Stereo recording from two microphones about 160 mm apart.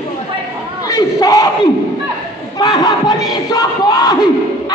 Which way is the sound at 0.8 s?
20° left (ahead or behind).